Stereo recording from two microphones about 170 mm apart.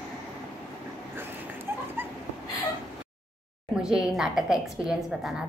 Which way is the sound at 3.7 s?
5° right (ahead or behind).